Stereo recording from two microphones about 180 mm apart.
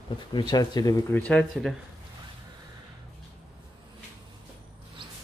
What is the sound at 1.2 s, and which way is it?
Speech, 5° left (ahead or behind).